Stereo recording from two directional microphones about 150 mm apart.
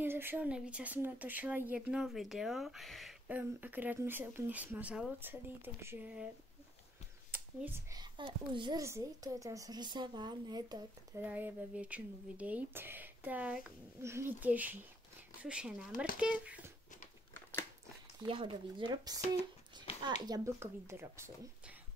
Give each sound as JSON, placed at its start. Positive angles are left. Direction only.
{"t": 0.0, "sound": "speech", "side_deg": -15}
{"t": 3.3, "sound": "speech", "side_deg": -10}
{"t": 7.9, "sound": "a woman's voice", "side_deg": -30}
{"t": 8.8, "sound": "a woman's voice", "side_deg": -20}
{"t": 11.2, "sound": "speech", "side_deg": -10}
{"t": 18.2, "sound": "speech", "side_deg": -35}